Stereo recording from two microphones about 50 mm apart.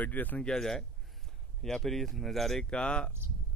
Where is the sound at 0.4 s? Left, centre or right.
Centre.